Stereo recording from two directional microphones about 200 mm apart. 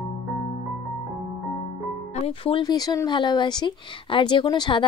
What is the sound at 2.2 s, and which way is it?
Speech, 30° left (ahead or behind).